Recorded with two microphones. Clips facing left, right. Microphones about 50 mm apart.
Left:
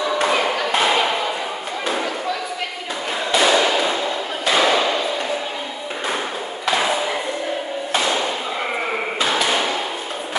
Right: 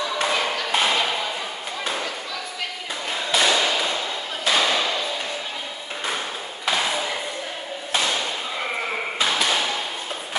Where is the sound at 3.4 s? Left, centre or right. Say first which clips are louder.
Left 5 dB; centre.